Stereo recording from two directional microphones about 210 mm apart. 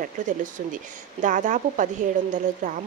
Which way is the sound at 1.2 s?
40° right (ahead or behind).